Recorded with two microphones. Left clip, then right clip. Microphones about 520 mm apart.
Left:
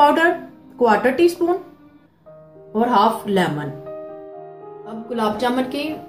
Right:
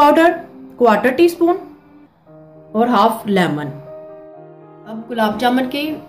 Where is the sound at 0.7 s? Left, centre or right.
Centre.